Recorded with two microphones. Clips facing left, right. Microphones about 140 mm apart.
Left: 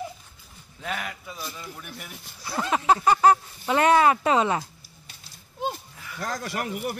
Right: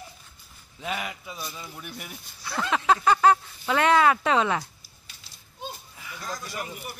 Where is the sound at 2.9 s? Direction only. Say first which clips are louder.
Left 1 dB; 15° left (ahead or behind).